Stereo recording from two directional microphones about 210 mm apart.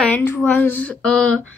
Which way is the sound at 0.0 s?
10° left (ahead or behind).